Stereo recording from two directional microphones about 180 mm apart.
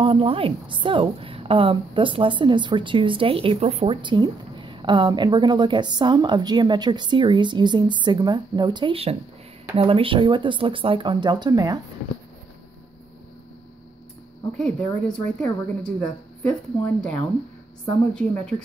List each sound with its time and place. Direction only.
0.0 s a woman's voice: 30° right (ahead or behind)
14.6 s a woman's voice: 5° left (ahead or behind)